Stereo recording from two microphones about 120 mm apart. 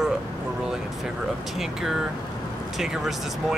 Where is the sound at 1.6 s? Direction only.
5° right (ahead or behind).